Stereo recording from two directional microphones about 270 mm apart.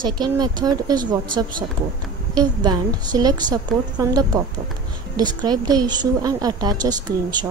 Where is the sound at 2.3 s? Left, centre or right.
Centre.